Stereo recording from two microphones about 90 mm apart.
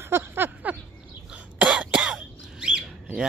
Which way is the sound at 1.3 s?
10° right (ahead or behind).